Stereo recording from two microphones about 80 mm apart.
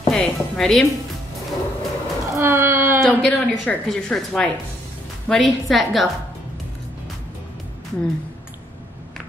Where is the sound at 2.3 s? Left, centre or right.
Right.